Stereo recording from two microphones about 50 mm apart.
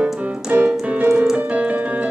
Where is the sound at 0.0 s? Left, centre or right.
Right.